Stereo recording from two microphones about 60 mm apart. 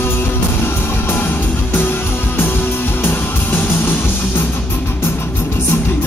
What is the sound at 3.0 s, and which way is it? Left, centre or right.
Music, left.